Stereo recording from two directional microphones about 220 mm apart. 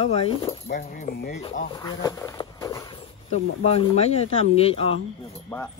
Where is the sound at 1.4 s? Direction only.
20° left (ahead or behind).